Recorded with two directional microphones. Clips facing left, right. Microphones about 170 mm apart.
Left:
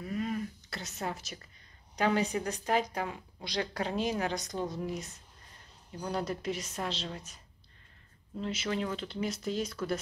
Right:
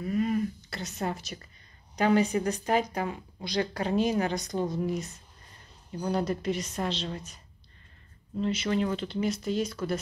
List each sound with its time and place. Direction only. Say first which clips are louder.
0.0 s a sound: right 7 dB; 5° right (ahead or behind)
2.0 s speech: right 5 dB; centre (ahead or behind)
8.4 s speech: right 6 dB; 5° left (ahead or behind)